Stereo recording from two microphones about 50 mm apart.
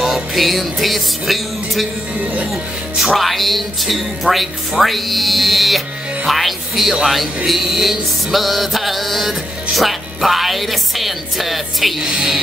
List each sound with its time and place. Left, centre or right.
0.0 s a man's voice: centre
3.0 s a man's voice: centre
12.0 s speech: centre